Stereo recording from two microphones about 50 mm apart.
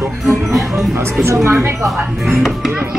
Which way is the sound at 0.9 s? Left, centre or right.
Right.